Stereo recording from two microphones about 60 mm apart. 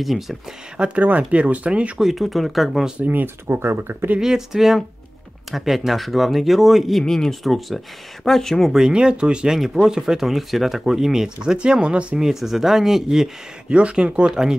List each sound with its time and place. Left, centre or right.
0.0 s speech: centre
0.7 s speech: right
2.0 s speech: centre
3.0 s speech: right
4.2 s speech: centre
12.2 s speech: centre
13.7 s speech: centre